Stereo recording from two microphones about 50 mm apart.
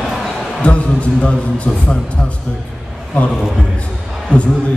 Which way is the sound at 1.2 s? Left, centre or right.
Left.